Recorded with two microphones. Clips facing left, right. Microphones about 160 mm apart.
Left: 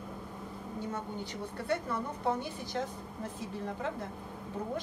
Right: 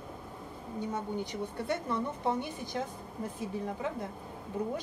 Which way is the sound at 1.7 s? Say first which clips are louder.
Even; 20° right (ahead or behind).